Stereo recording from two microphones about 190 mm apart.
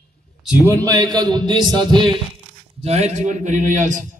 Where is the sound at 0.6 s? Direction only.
20° right (ahead or behind).